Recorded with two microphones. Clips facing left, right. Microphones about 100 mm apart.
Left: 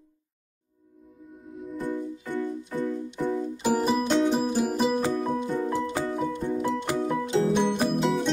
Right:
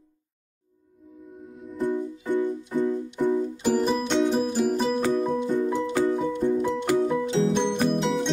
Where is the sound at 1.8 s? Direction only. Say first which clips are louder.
Right 6 dB; 15° right (ahead or behind).